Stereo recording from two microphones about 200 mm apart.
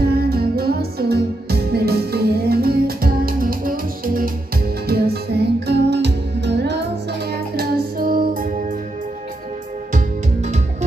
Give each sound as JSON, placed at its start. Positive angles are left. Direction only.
{"t": 0.1, "sound": "music", "side_deg": -50}
{"t": 9.9, "sound": "music", "side_deg": -35}